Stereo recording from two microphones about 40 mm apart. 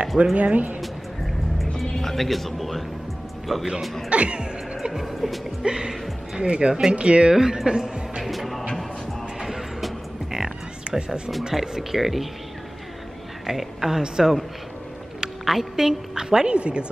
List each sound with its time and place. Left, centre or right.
0.2 s speech: right
1.8 s speech: centre
4.1 s speech: right
4.9 s speech: centre
5.6 s speech: centre
7.3 s speech: centre
8.3 s music: centre
9.8 s music: centre
11.6 s a woman's voice: centre
13.5 s a woman's voice: centre
15.4 s a woman's voice: centre
16.5 s speech: right